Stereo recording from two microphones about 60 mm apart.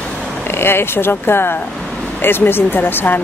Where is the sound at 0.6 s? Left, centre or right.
Left.